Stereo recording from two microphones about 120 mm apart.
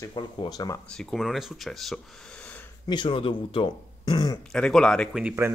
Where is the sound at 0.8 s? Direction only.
Centre (ahead or behind).